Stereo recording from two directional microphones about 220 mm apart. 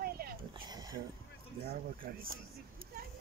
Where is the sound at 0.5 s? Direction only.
20° right (ahead or behind).